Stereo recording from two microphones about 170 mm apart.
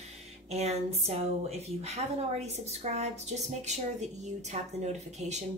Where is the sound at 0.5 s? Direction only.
40° right (ahead or behind).